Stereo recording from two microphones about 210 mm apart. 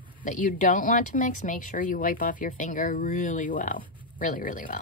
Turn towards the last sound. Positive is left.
turn(degrees=40)  # may be behind; listen again after turning